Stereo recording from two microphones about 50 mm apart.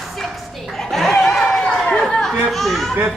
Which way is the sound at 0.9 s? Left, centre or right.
Centre.